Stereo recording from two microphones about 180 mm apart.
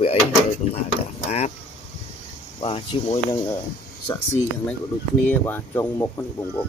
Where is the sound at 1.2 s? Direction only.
35° left (ahead or behind).